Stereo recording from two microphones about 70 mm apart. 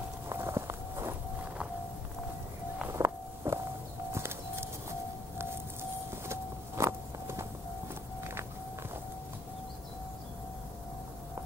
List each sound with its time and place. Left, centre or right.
0.3 s walk: right
2.9 s walk: right
4.1 s a sound: right